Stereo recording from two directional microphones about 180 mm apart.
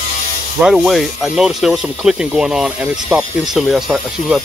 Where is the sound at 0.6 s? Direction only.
5° right (ahead or behind).